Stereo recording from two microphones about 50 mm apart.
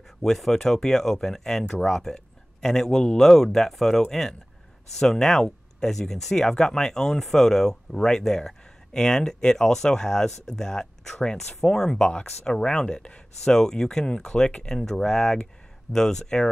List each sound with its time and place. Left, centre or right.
0.2 s speech: centre